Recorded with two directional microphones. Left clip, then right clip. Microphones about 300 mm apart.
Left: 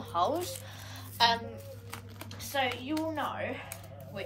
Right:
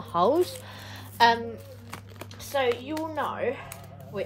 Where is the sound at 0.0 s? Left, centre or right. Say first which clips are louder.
Right 7 dB; right.